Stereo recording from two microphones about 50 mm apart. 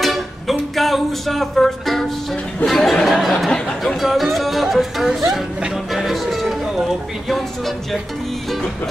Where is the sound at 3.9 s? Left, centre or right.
Centre.